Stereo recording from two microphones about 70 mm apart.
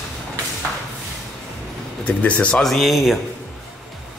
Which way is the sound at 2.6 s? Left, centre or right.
Centre.